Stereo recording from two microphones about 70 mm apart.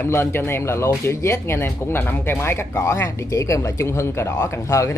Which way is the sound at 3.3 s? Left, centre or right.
Left.